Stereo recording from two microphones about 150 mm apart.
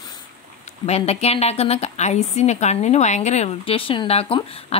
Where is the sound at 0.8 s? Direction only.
45° left (ahead or behind).